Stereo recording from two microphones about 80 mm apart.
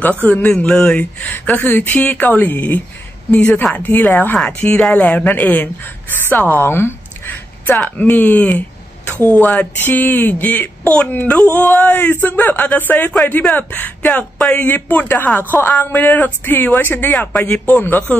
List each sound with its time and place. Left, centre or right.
0.0 s speech: centre